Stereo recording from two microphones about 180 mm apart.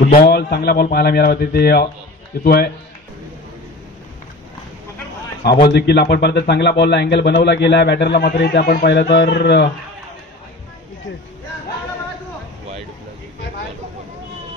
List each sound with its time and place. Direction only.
0.1 s speech: 55° left (ahead or behind)
5.4 s speech: 65° left (ahead or behind)